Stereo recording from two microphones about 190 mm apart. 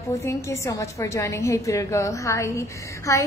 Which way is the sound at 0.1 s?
15° left (ahead or behind).